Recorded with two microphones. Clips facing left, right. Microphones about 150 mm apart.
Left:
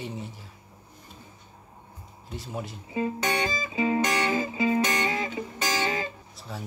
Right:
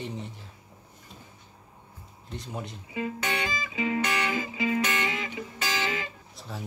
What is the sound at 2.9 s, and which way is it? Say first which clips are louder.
Music: left 4 dB; 35° left (ahead or behind).